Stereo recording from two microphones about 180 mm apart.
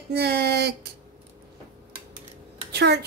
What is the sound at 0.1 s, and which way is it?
Speech, 65° right (ahead or behind).